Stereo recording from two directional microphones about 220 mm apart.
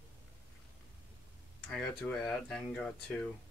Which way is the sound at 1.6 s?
5° left (ahead or behind).